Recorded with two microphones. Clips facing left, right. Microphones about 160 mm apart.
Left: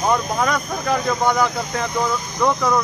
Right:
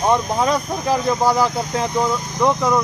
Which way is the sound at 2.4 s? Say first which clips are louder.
Right 1 dB; 15° right (ahead or behind).